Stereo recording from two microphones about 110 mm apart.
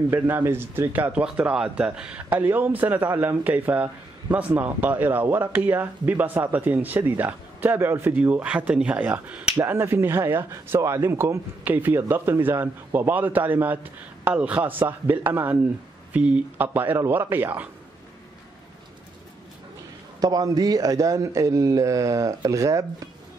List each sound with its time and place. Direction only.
0.1 s speech: 20° right (ahead or behind)
9.7 s speech: 20° right (ahead or behind)
20.2 s a man's voice: 35° right (ahead or behind)